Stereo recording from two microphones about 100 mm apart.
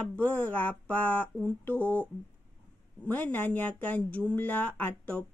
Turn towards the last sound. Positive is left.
turn(degrees=15)  # may be behind; listen again after turning